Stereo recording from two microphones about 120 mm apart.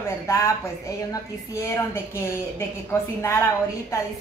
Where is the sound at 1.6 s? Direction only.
20° left (ahead or behind).